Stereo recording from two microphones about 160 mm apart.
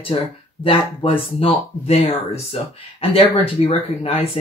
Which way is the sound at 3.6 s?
40° left (ahead or behind).